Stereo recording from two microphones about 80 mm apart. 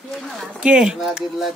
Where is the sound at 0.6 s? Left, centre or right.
Centre.